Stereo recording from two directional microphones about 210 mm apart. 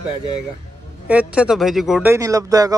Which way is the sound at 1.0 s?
5° right (ahead or behind).